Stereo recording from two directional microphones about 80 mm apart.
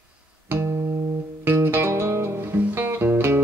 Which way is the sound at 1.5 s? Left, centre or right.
Right.